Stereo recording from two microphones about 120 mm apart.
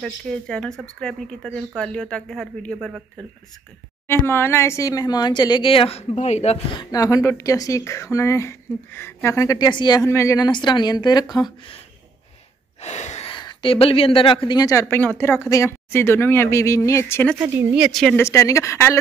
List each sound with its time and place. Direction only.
0.0 s speech: 5° left (ahead or behind)
4.1 s speech: 20° left (ahead or behind); by 6.6 s 65° left (ahead or behind)
6.7 s a woman's voice: 35° left (ahead or behind)
9.7 s speech: 40° left (ahead or behind)
10.0 s speech: 25° left (ahead or behind)
12.8 s a sound: 70° left (ahead or behind)
13.3 s a woman's voice: 40° left (ahead or behind); by 17.3 s 20° left (ahead or behind)
17.4 s speech: 20° right (ahead or behind)
17.7 s speech: 5° right (ahead or behind)
18.1 s a woman's voice: 20° left (ahead or behind)